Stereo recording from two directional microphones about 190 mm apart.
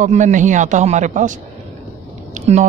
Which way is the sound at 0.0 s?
40° right (ahead or behind).